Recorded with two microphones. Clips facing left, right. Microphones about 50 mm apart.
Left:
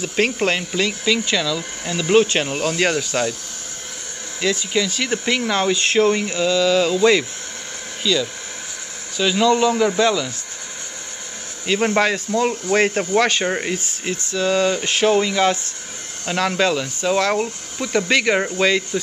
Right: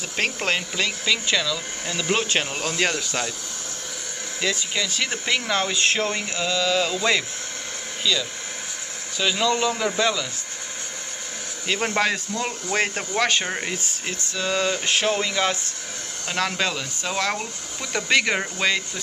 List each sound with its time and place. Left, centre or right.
0.0 s speech: centre
4.4 s speech: centre
11.6 s speech: centre